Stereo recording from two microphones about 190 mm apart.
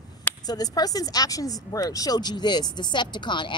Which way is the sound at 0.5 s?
20° left (ahead or behind).